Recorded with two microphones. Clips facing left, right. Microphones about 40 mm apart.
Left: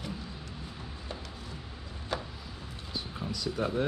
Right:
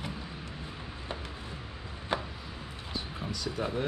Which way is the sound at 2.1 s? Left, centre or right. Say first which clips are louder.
Right 3 dB; right.